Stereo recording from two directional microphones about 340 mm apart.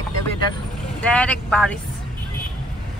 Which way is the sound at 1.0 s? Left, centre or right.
Centre.